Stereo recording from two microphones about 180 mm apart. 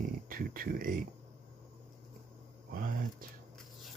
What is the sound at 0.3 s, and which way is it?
Speech, 50° right (ahead or behind).